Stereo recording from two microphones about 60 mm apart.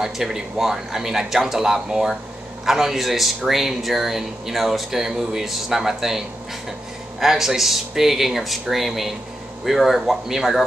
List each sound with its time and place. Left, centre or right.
0.0 s speech: centre